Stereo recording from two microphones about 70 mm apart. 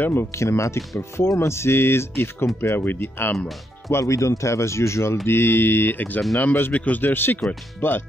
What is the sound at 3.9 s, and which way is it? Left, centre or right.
Speech, left.